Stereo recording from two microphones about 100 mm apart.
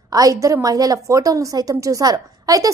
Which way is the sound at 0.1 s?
35° right (ahead or behind).